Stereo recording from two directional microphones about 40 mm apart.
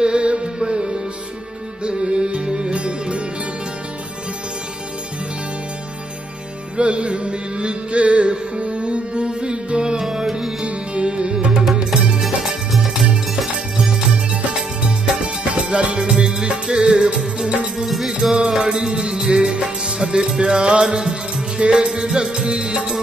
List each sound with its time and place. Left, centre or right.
0.0 s music: right
6.8 s music: right
10.0 s music: centre
10.6 s music: right
11.9 s music: centre
15.4 s music: right
17.7 s music: centre; by 22.8 s right